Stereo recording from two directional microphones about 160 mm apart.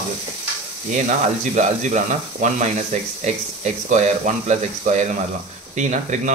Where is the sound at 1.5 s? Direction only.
50° right (ahead or behind).